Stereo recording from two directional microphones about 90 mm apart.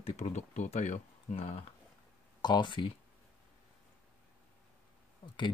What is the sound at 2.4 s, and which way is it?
Speech, 55° left (ahead or behind).